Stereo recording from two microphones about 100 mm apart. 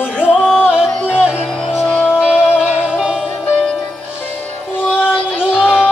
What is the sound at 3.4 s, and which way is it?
Music, 10° left (ahead or behind).